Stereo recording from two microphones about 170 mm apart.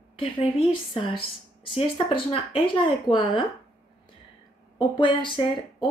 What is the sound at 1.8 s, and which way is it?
A woman's voice, 30° left (ahead or behind).